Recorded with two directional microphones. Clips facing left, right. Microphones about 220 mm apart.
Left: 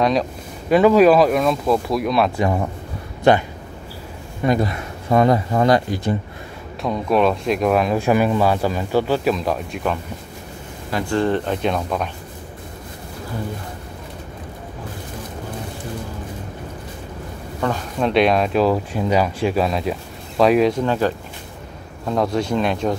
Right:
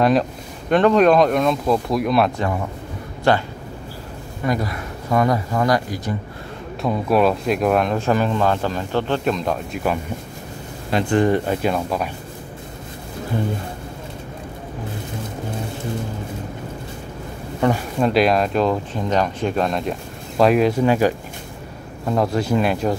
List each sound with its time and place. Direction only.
0.0 s speech: centre (ahead or behind)
3.3 s speech: 20° left (ahead or behind)
4.5 s speech: 25° left (ahead or behind)
6.8 s speech: 5° right (ahead or behind)
10.9 s speech: 20° right (ahead or behind); by 12.1 s 5° right (ahead or behind)
17.6 s speech: 15° right (ahead or behind)
17.9 s speech: centre (ahead or behind)
20.8 s speech: 10° right (ahead or behind)